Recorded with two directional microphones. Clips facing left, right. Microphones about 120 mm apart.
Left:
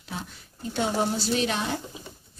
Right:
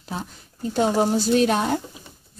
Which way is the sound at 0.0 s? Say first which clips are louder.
Right 5 dB; 40° right (ahead or behind).